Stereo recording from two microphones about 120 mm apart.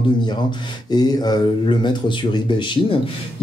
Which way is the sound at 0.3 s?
35° left (ahead or behind).